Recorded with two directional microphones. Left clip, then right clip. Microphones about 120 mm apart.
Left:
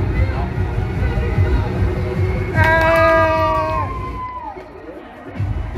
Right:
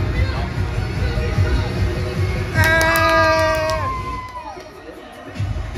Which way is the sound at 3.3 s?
25° right (ahead or behind).